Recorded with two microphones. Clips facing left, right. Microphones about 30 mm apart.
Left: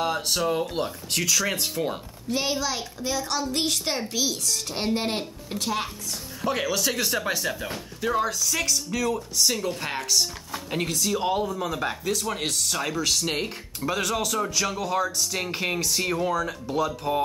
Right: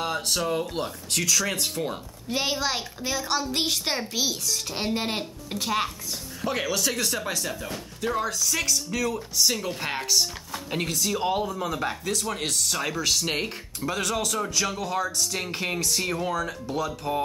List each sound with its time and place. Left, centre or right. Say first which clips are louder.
0.0 s speech: left 2 dB; centre
2.3 s a child's voice: even; centre
4.3 s speech: even; centre